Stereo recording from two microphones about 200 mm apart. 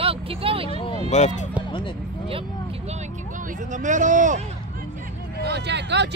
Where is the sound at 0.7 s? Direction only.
25° left (ahead or behind).